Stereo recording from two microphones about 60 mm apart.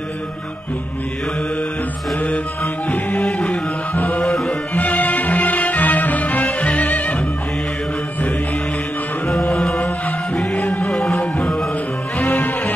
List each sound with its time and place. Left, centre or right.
3.2 s music: centre
3.9 s music: left
9.3 s music: centre
12.2 s music: left